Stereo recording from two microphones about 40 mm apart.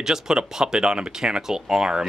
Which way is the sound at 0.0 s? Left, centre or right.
Centre.